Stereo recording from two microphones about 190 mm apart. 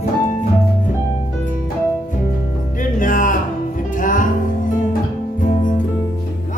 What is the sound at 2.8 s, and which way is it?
Music, 45° left (ahead or behind).